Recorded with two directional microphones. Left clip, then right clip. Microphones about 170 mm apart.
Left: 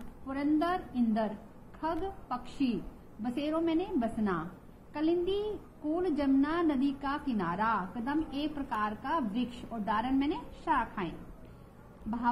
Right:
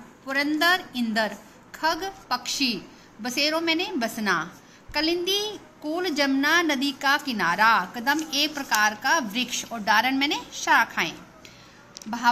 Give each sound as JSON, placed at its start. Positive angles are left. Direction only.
{"t": 0.3, "sound": "a woman's voice", "side_deg": -35}